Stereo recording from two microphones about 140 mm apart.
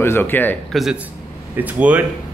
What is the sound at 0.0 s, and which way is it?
Speech, 15° left (ahead or behind).